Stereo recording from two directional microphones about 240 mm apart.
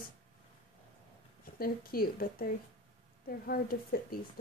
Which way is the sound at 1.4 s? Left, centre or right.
Left.